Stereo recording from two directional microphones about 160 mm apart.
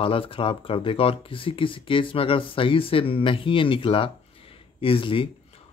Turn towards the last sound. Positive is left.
turn(degrees=35)  # may be behind; listen again after turning